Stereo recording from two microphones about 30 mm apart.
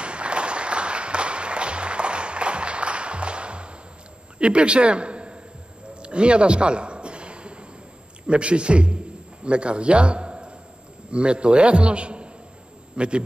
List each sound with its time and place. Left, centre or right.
0.0 s applause: right
4.4 s a man's voice: right
5.9 s a sound: right
8.3 s a man's voice: right